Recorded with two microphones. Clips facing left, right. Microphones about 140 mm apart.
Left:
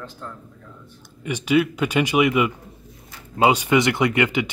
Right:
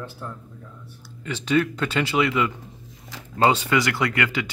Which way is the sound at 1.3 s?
15° left (ahead or behind).